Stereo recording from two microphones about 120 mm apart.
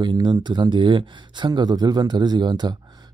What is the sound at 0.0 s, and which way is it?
Speech, 40° right (ahead or behind).